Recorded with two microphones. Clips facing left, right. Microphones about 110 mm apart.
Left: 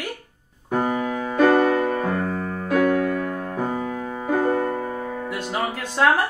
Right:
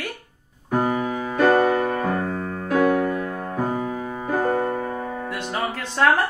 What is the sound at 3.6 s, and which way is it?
Music, 15° right (ahead or behind).